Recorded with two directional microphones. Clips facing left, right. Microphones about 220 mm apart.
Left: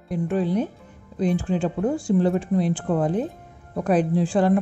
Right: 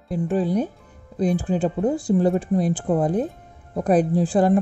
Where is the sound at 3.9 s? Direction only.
40° right (ahead or behind).